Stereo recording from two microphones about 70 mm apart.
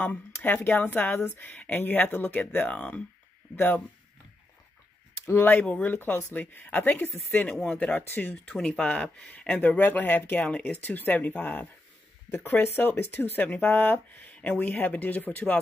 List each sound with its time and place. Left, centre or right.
0.0 s speech: left
5.2 s speech: left
5.6 s speech: left
8.5 s speech: centre
9.6 s speech: left
12.7 s speech: left